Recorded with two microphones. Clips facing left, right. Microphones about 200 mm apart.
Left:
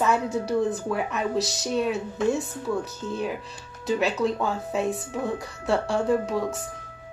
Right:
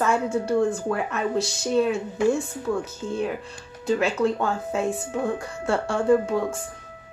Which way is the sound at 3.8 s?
Centre (ahead or behind).